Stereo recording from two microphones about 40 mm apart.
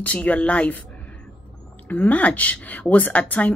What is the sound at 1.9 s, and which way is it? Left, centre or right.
Speech, left.